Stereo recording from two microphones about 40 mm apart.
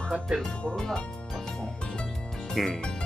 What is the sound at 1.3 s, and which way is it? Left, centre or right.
Music, centre.